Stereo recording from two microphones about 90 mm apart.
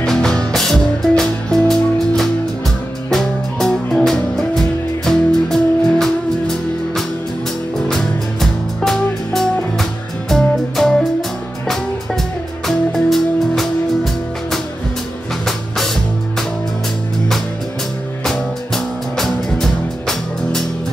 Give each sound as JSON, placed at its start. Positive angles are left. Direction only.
{"t": 0.0, "sound": "music", "side_deg": 5}
{"t": 7.9, "sound": "music", "side_deg": 5}
{"t": 19.1, "sound": "music", "side_deg": 5}